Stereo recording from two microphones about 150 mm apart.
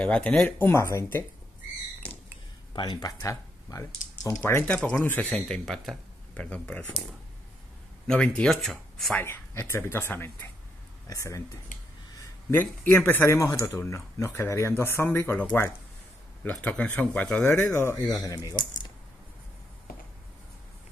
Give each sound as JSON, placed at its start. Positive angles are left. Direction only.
{"t": 0.0, "sound": "speech", "side_deg": 5}
{"t": 2.0, "sound": "a sound", "side_deg": 10}
{"t": 2.7, "sound": "speech", "side_deg": 30}
{"t": 8.1, "sound": "speech", "side_deg": 5}
{"t": 9.1, "sound": "speech", "side_deg": 15}
{"t": 16.4, "sound": "speech", "side_deg": 5}